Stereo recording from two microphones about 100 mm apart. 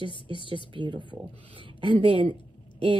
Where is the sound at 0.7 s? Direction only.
50° right (ahead or behind).